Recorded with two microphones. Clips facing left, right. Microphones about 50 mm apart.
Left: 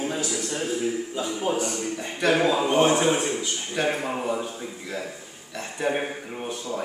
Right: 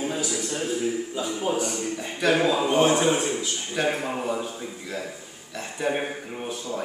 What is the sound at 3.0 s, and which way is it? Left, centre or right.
A man's voice, centre.